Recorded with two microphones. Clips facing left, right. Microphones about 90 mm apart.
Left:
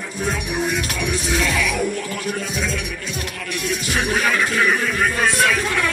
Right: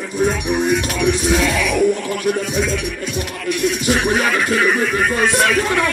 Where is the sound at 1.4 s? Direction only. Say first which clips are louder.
Right 4 dB; centre (ahead or behind).